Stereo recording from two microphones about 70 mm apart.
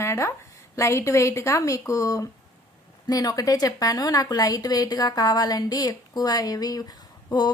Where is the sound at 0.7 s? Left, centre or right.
Left.